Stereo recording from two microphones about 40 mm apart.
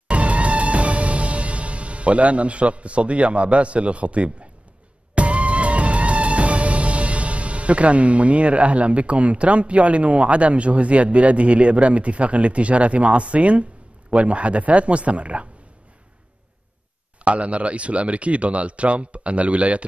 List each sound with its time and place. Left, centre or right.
0.1 s music: right
14.1 s speech: right
17.2 s speech: right